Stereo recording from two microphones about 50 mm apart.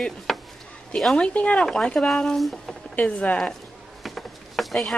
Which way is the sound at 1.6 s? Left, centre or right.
Centre.